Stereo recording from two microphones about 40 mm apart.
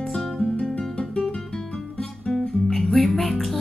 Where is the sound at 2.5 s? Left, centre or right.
Centre.